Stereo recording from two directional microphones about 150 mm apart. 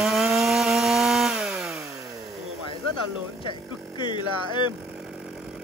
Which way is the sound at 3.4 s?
30° left (ahead or behind).